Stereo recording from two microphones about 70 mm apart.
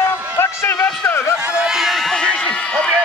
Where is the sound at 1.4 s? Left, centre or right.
Centre.